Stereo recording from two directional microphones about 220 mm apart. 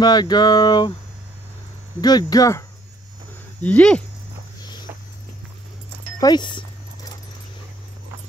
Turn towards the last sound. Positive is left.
turn(degrees=20)  # may be behind; listen again after turning